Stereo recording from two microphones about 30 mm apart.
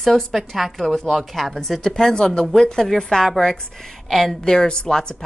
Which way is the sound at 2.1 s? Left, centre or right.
Left.